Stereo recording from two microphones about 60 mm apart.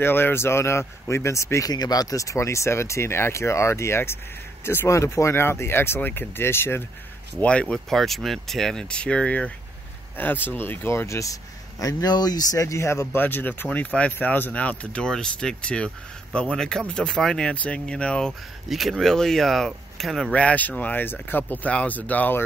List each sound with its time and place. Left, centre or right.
0.0 s speech: left
4.8 s speech: left
7.3 s speech: centre
7.9 s speech: centre
8.8 s speech: centre
10.1 s speech: left
10.9 s speech: left
11.8 s speech: left
13.2 s speech: left
14.1 s speech: left
14.5 s speech: left
18.7 s speech: centre
20.3 s speech: left